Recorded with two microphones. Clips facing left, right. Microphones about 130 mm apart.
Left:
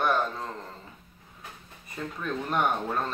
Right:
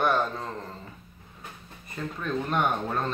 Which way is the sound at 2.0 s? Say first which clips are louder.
Right 1 dB; 10° left (ahead or behind).